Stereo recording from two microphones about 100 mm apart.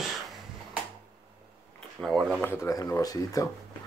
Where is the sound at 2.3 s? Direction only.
25° left (ahead or behind).